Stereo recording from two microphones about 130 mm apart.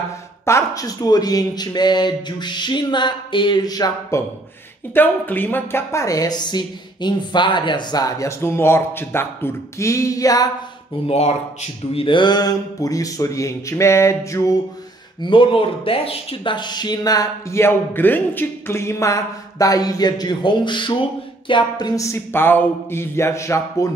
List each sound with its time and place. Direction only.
0.5 s speech: 25° left (ahead or behind)
4.9 s a woman's voice: 15° left (ahead or behind)
11.1 s a woman's voice: 55° left (ahead or behind); by 14.5 s 20° left (ahead or behind)
15.2 s a woman's voice: 40° left (ahead or behind); by 23.9 s 20° left (ahead or behind)